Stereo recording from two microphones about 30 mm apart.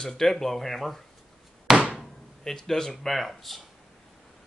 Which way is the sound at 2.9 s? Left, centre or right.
Centre.